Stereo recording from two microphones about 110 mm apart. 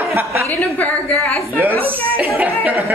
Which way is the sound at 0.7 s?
15° left (ahead or behind).